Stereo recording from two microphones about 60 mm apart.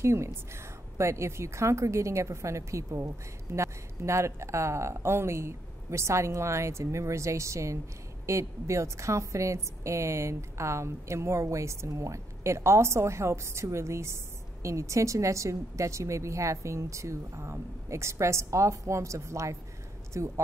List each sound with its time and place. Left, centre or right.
0.0 s speech: right